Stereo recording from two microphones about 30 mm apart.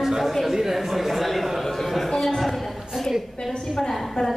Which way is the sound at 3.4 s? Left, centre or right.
Left.